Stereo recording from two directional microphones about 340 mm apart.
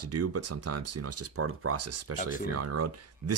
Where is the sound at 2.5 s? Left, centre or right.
Right.